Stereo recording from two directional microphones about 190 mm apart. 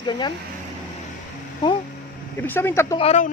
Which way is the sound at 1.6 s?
25° left (ahead or behind).